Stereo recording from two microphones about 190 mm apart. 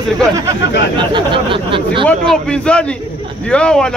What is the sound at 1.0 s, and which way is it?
Speech, 25° right (ahead or behind).